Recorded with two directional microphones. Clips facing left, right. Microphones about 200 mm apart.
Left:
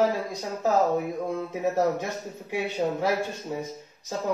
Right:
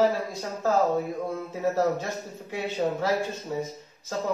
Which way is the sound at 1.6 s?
15° left (ahead or behind).